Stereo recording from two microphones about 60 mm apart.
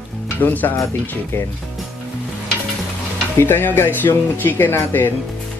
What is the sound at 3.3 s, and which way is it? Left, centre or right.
Speech, left.